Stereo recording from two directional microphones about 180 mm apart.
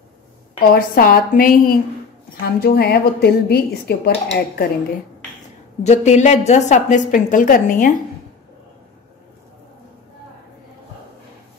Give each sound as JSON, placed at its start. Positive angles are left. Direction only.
{"t": 0.6, "sound": "a woman's voice", "side_deg": 55}
{"t": 5.9, "sound": "a woman's voice", "side_deg": 40}